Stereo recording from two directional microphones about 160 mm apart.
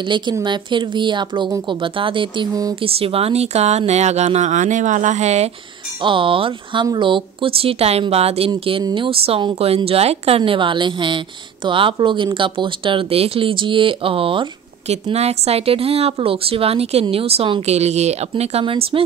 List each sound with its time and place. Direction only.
0.0 s a woman's voice: 30° right (ahead or behind)
2.8 s speech: 35° right (ahead or behind)
6.0 s speech: 30° right (ahead or behind)